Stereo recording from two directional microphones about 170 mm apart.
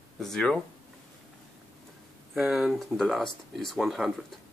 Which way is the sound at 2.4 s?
5° right (ahead or behind).